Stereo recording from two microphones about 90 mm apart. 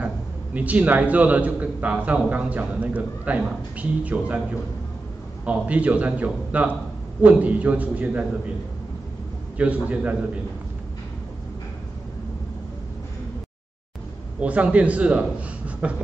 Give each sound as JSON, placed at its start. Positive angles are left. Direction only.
{"t": 0.6, "sound": "a man's voice", "side_deg": -15}
{"t": 5.4, "sound": "a man's voice", "side_deg": -15}
{"t": 9.6, "sound": "a man's voice", "side_deg": -15}
{"t": 14.4, "sound": "a man's voice", "side_deg": -15}